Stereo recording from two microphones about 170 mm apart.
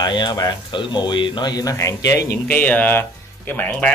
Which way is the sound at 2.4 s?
10° left (ahead or behind).